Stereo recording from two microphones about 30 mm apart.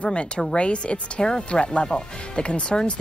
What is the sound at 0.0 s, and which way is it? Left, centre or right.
Speech, left.